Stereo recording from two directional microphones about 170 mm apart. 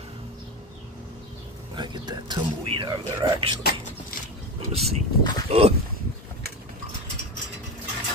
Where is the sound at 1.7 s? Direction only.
25° right (ahead or behind).